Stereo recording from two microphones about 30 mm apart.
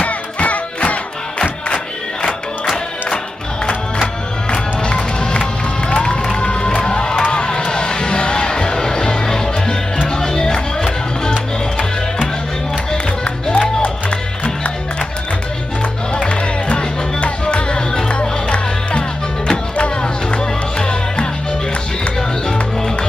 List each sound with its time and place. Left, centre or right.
0.0 s music: left
4.5 s music: left
5.2 s crowd: left
6.4 s music: left
13.2 s music: left
16.2 s music: left
22.5 s music: left